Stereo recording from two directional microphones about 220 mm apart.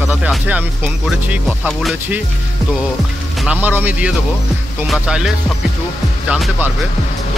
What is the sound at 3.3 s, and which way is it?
Speech, 5° right (ahead or behind).